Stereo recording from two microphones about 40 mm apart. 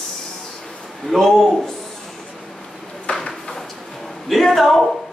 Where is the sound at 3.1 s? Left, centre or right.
Left.